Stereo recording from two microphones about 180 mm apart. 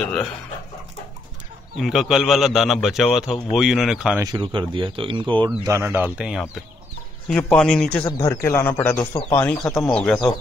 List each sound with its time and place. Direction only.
0.0 s a man's voice: 5° left (ahead or behind)
1.8 s a man's voice: centre (ahead or behind)
4.2 s a man's voice: 25° right (ahead or behind); by 8.1 s 5° left (ahead or behind)
8.2 s speech: 15° left (ahead or behind)
9.0 s speech: 25° left (ahead or behind)
9.4 s speech: 15° left (ahead or behind)
9.8 s a man's voice: 5° left (ahead or behind)